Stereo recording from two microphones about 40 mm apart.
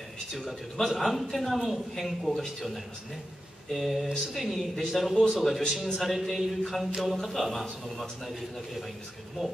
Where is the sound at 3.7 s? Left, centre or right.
Centre.